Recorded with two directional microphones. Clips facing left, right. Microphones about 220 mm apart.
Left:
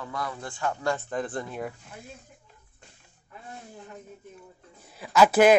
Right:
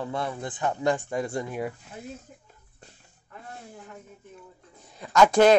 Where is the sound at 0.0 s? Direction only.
25° right (ahead or behind); by 1.7 s 10° right (ahead or behind).